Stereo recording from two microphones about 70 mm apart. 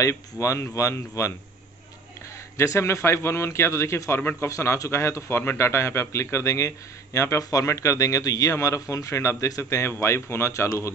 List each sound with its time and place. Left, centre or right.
0.0 s a man's voice: left
2.5 s a man's voice: left